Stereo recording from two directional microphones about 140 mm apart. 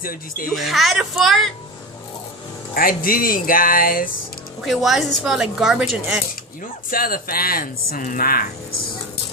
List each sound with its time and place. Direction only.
0.5 s a woman's voice: centre (ahead or behind)
2.7 s speech: 85° left
4.6 s a woman's voice: centre (ahead or behind)
6.9 s speech: 90° left